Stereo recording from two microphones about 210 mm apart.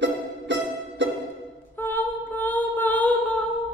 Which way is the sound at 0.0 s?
60° right (ahead or behind).